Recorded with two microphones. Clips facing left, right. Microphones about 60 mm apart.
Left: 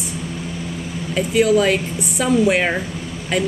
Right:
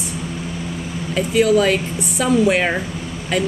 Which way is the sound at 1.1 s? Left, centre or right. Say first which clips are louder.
Even; centre.